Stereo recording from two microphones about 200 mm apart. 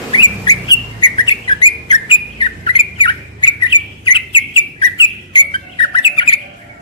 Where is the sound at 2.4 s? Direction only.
25° left (ahead or behind).